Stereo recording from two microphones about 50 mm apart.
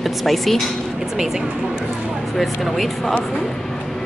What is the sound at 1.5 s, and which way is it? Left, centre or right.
Speech, right.